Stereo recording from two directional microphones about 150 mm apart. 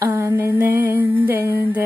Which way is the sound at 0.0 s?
20° right (ahead or behind).